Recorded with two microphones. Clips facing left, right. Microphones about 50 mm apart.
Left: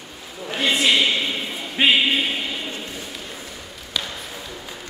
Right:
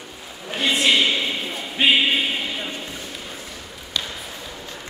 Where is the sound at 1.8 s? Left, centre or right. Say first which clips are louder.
Left 1 dB; centre.